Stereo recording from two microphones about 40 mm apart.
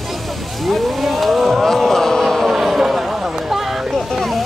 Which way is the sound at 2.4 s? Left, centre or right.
Centre.